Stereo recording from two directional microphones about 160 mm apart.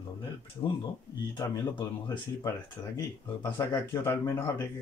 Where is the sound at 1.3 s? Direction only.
20° left (ahead or behind).